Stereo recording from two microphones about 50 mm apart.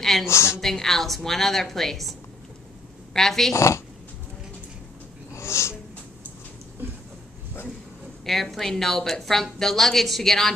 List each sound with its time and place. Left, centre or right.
0.3 s a woman's voice: left
0.6 s a woman's voice: centre
3.5 s speech: left
5.3 s snort: left
8.3 s a woman's voice: centre